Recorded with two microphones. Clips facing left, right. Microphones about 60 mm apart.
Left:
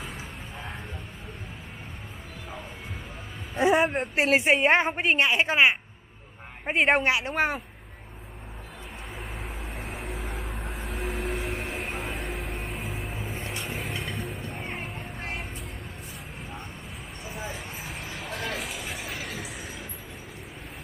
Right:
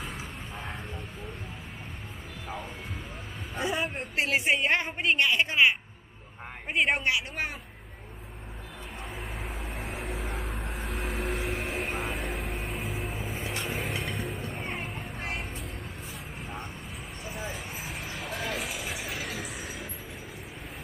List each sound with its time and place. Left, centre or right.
3.5 s a woman's voice: left
9.4 s vehicle: centre
13.6 s music: centre
17.3 s a sound: centre